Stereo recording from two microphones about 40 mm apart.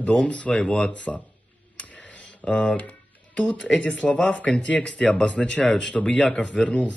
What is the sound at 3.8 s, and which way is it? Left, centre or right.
Speech, left.